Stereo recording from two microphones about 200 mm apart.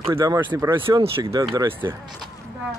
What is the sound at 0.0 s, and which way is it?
Speech, 20° right (ahead or behind).